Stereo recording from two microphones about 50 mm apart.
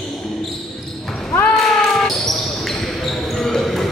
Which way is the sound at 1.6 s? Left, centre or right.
Centre.